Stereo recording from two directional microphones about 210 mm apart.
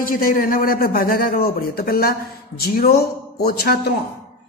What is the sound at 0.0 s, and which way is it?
Speech, 40° left (ahead or behind).